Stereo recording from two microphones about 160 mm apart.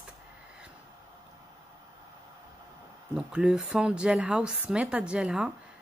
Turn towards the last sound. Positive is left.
turn(degrees=-5)  # may be behind; listen again after turning